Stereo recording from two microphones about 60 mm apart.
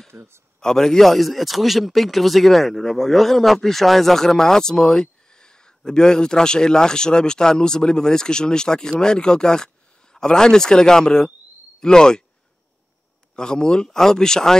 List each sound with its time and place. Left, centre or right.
0.1 s speech: right
0.6 s speech: centre
13.4 s speech: centre